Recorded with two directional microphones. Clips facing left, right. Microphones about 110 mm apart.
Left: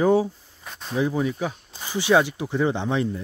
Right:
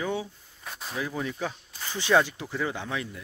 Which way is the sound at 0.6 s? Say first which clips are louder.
Left 1 dB; centre (ahead or behind).